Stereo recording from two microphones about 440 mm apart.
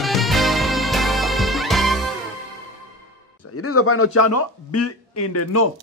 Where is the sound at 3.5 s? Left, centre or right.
Left.